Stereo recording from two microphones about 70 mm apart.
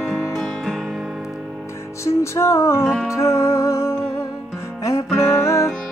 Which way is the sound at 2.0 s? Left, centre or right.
Left.